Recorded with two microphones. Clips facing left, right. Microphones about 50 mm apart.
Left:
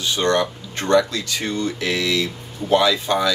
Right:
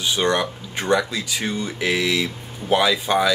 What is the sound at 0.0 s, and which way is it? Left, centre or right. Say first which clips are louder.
Speech: left 1 dB; centre.